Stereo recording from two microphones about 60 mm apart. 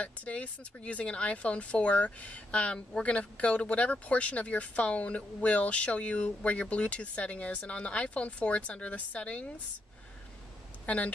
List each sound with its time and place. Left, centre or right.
0.0 s speech: left
10.9 s speech: left